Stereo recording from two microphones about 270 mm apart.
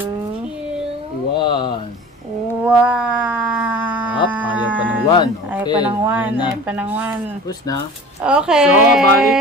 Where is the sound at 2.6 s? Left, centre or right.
Centre.